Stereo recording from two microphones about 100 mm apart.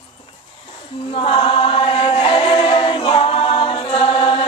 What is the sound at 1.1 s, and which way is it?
Choir, 65° left (ahead or behind).